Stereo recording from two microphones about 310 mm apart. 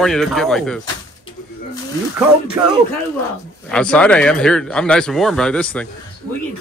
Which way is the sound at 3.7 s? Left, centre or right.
Centre.